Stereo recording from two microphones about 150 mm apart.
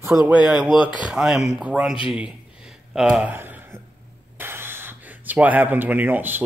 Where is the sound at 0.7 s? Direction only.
30° left (ahead or behind).